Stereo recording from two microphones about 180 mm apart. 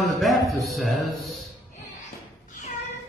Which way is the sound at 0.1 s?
Centre (ahead or behind).